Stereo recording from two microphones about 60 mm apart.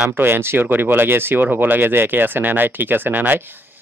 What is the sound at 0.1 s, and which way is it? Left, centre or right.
Speech, right.